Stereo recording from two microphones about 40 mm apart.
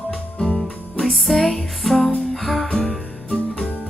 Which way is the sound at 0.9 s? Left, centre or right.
Centre.